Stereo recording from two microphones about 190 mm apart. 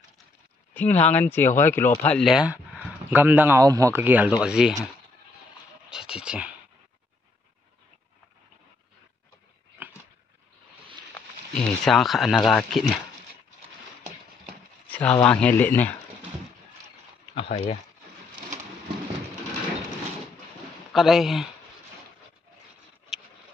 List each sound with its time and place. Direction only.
0.7 s speech: 10° left (ahead or behind)
5.9 s a sound: 5° right (ahead or behind)
11.1 s speech: 5° left (ahead or behind)
14.9 s speech: 10° left (ahead or behind)
17.3 s speech: 30° left (ahead or behind)
20.9 s speech: centre (ahead or behind)
23.1 s a sound: centre (ahead or behind)